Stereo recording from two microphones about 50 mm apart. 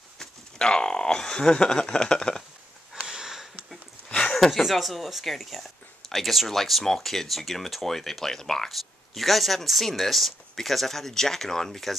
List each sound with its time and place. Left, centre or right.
0.2 s speech: centre
3.0 s sniff: centre
4.2 s a sound: centre
4.5 s speech: centre